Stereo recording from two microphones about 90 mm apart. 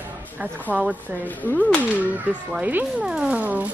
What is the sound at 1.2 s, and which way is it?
Speech, 20° left (ahead or behind).